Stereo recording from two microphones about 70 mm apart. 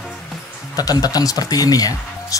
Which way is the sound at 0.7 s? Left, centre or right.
Left.